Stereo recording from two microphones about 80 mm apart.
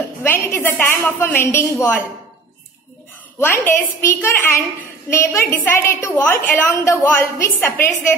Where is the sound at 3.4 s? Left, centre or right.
Left.